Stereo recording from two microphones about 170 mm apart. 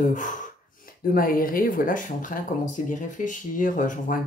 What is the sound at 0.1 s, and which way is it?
A woman's voice, 50° left (ahead or behind).